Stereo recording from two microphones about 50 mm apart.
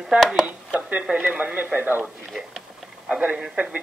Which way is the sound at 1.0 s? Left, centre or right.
Centre.